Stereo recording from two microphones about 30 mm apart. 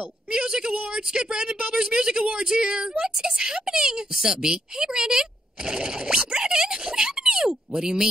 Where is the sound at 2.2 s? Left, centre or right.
Right.